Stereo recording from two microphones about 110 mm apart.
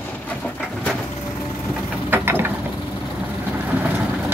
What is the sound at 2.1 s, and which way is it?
Mechanisms, 20° right (ahead or behind).